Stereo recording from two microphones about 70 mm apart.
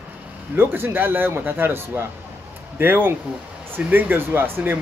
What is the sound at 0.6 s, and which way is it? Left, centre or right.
Speech, right.